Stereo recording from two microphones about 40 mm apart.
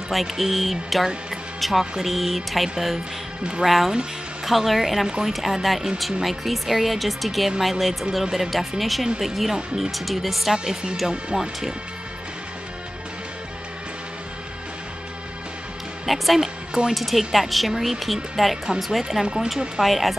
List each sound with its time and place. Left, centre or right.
0.1 s speech: centre
5.0 s speech: centre
5.3 s speech: centre
10.5 s speech: centre
16.1 s speech: centre
19.2 s speech: centre
19.8 s speech: centre